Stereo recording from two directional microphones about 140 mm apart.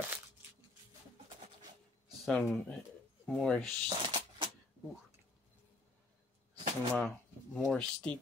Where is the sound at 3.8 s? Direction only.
35° right (ahead or behind).